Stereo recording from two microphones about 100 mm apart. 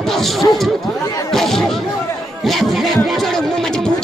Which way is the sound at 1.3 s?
5° left (ahead or behind).